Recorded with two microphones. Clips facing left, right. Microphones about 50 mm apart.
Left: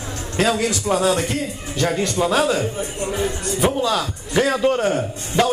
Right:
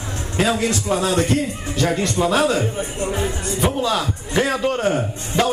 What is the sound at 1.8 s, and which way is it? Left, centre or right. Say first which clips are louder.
A man's voice: even; centre.